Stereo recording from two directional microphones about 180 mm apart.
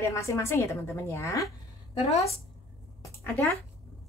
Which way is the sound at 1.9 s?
35° left (ahead or behind).